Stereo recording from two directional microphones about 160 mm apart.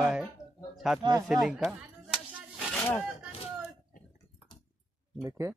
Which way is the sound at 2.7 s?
5° left (ahead or behind).